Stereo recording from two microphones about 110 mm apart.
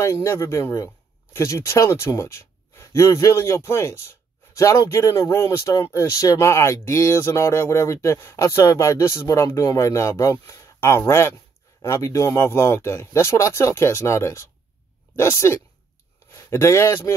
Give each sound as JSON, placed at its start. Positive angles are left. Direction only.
{"t": 0.0, "sound": "speech", "side_deg": 25}